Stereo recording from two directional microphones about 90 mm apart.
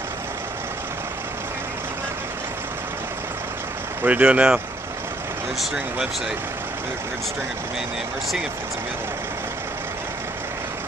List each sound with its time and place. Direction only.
4.0 s speech: 20° right (ahead or behind)